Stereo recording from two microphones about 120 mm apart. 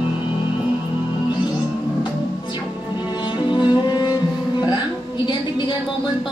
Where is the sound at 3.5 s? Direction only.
40° left (ahead or behind).